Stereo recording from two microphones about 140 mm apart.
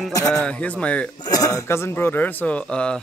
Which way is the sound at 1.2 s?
25° left (ahead or behind).